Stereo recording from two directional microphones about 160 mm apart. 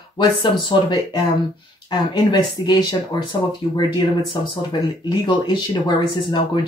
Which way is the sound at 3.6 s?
40° left (ahead or behind).